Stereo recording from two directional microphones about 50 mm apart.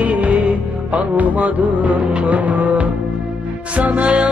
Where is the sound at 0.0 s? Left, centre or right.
Right.